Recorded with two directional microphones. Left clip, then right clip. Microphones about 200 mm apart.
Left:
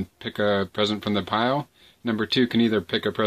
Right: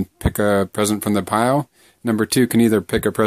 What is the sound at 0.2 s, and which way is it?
Speech, 50° right (ahead or behind).